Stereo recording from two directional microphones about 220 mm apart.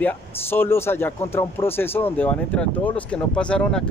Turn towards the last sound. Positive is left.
turn(degrees=5)  # may be behind; listen again after turning